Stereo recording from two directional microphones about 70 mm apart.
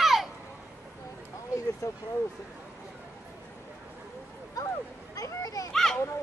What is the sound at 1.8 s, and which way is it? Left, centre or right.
Speech, left.